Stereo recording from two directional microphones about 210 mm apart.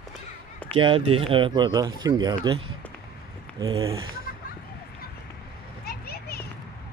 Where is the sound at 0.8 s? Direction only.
25° right (ahead or behind).